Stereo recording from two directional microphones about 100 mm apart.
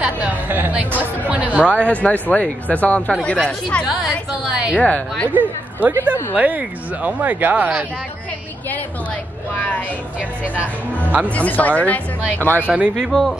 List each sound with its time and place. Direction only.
0.0 s speech: 15° right (ahead or behind)
2.0 s speech: 15° left (ahead or behind)
4.5 s speech: 10° right (ahead or behind)
4.7 s speech: 15° left (ahead or behind)
5.3 s speech: 15° right (ahead or behind)
11.2 s speech: 15° left (ahead or behind)
12.6 s speech: 15° right (ahead or behind)
13.1 s speech: centre (ahead or behind)